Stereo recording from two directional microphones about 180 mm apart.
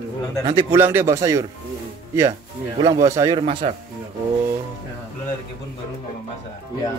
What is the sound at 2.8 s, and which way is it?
Speech, 20° right (ahead or behind).